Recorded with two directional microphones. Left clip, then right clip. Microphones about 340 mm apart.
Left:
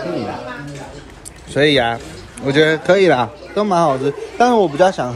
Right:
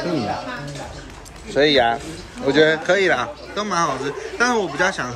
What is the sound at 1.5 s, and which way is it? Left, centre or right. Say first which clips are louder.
A man's voice: left 1 dB; centre.